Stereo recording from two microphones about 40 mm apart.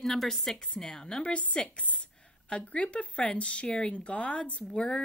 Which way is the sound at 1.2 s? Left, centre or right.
Left.